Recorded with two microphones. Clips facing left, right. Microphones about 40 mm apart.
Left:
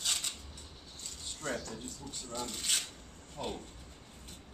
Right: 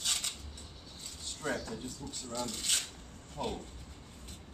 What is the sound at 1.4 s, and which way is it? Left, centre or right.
Speech, centre.